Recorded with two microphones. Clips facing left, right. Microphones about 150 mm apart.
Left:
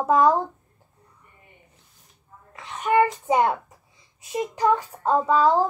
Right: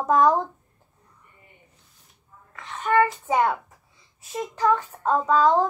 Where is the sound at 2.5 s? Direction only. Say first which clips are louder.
Left 1 dB; 15° left (ahead or behind).